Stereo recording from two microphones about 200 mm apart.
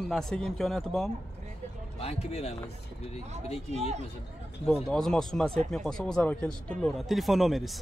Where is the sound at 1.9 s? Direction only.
30° left (ahead or behind).